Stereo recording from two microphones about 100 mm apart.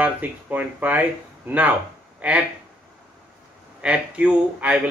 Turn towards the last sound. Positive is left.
turn(degrees=-10)  # may be behind; listen again after turning